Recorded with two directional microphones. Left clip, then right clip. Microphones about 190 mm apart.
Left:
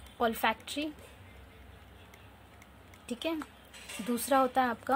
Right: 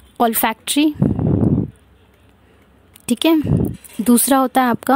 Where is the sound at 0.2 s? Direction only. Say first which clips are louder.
Right 13 dB; 60° right (ahead or behind).